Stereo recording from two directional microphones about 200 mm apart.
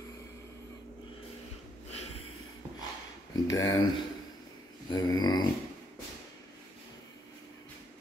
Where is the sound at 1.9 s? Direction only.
30° left (ahead or behind).